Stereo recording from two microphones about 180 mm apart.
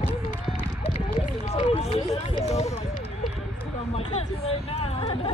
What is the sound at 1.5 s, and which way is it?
Run, 40° left (ahead or behind).